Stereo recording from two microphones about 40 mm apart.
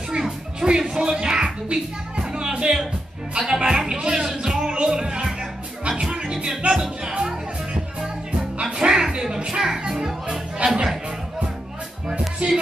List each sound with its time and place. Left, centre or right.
0.2 s music: centre
3.3 s speech: centre
4.5 s music: centre
6.7 s speech: centre
8.0 s music: centre
12.4 s music: right